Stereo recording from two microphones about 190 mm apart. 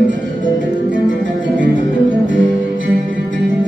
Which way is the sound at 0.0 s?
45° left (ahead or behind).